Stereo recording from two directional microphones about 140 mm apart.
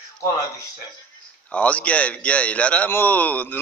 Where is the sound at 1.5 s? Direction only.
10° left (ahead or behind).